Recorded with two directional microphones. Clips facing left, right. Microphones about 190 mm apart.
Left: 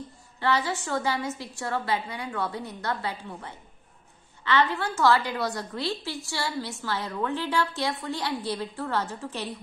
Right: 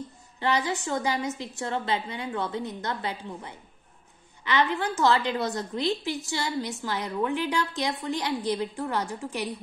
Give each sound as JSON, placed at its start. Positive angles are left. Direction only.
{"t": 0.4, "sound": "a woman's voice", "side_deg": -20}